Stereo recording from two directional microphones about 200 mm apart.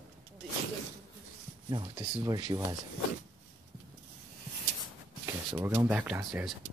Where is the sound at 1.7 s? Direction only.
25° right (ahead or behind).